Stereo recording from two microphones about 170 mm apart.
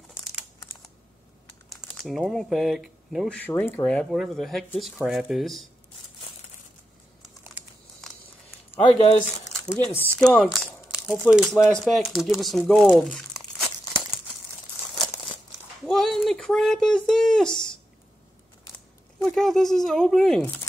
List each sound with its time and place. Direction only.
1.5 s speech: centre (ahead or behind)
3.3 s speech: 10° left (ahead or behind)
8.0 s a sound: centre (ahead or behind)
8.7 s speech: 35° left (ahead or behind)
10.1 s speech: 5° left (ahead or behind)
15.9 s speech: centre (ahead or behind)
19.2 s speech: centre (ahead or behind)